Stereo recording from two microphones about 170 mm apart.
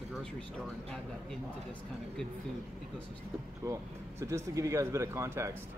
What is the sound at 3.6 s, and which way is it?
Speech, 20° right (ahead or behind).